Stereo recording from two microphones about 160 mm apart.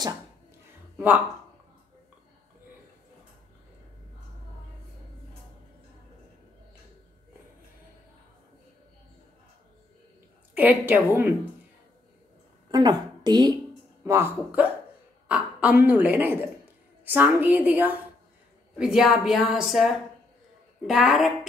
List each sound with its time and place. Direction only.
0.9 s speech: 10° right (ahead or behind)
10.5 s a woman's voice: 10° right (ahead or behind)
12.7 s a woman's voice: 25° right (ahead or behind)
14.0 s a woman's voice: 15° right (ahead or behind)